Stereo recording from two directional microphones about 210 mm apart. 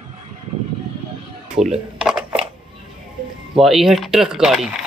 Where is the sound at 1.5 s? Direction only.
30° right (ahead or behind).